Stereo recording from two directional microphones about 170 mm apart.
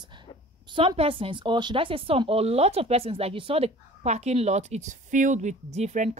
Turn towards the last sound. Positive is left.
turn(degrees=-45)  # may be behind; listen again after turning